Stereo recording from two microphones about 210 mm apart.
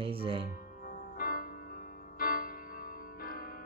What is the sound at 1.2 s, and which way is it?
Music, 40° left (ahead or behind).